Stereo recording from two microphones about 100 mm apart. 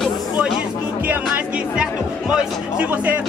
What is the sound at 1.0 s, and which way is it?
Speech, 15° right (ahead or behind).